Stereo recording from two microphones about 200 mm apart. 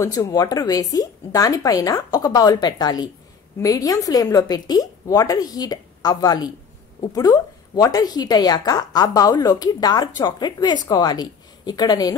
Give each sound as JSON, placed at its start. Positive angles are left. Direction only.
{"t": 0.0, "sound": "a woman's voice", "side_deg": 20}